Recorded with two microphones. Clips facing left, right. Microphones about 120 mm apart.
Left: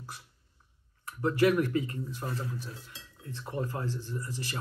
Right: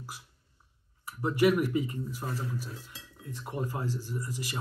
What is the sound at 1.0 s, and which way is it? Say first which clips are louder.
Speech: even; 10° right (ahead or behind).